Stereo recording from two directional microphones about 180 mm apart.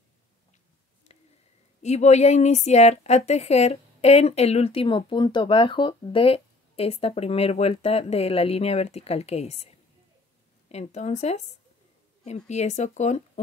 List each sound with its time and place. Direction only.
1.8 s a woman's voice: 40° left (ahead or behind)